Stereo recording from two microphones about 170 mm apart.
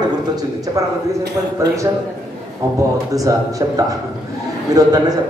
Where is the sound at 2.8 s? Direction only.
20° right (ahead or behind).